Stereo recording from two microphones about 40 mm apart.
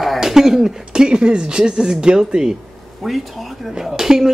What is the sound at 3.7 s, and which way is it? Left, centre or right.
Speech, centre.